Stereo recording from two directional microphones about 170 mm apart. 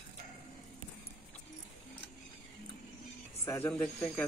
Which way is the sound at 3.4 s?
15° left (ahead or behind).